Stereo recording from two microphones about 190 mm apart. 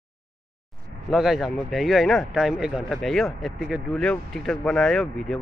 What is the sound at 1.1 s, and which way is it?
Speech, centre (ahead or behind).